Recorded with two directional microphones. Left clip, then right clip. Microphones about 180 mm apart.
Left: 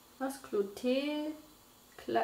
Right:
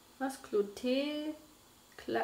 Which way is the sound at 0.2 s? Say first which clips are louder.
Even; 5° right (ahead or behind).